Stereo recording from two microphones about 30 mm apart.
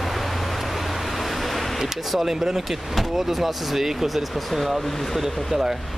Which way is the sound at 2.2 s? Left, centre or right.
Centre.